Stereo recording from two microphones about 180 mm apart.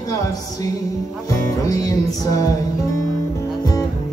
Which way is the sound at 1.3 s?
20° left (ahead or behind).